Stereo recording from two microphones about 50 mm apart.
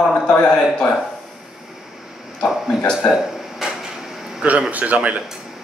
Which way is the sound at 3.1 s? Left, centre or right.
Centre.